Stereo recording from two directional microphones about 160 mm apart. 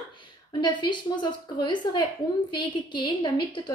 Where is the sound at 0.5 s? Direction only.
30° left (ahead or behind).